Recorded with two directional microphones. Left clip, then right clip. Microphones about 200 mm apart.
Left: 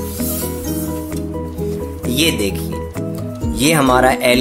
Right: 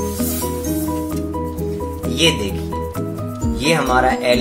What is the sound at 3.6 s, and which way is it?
Speech, 60° left (ahead or behind).